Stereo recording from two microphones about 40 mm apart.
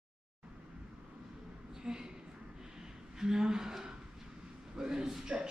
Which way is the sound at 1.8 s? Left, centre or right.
Centre.